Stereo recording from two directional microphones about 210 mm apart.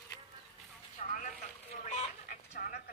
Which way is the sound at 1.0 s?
40° left (ahead or behind).